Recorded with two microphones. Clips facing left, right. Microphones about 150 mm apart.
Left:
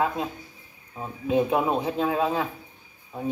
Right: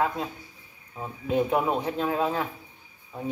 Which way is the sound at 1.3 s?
20° left (ahead or behind).